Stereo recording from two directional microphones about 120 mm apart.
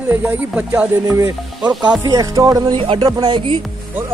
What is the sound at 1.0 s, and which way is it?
Speech, 25° right (ahead or behind).